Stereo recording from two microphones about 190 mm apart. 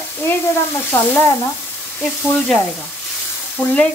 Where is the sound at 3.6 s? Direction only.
5° left (ahead or behind).